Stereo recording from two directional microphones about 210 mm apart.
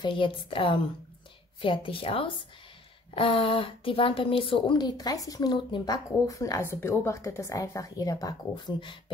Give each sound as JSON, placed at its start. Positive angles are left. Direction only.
{"t": 0.0, "sound": "a woman's voice", "side_deg": 25}